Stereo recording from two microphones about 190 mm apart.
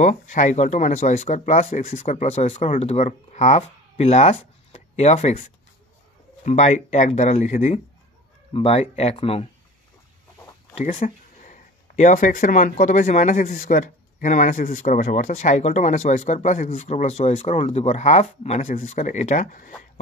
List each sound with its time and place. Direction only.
0.0 s speech: 40° left (ahead or behind)
6.4 s speech: 40° left (ahead or behind)
10.7 s speech: 35° left (ahead or behind)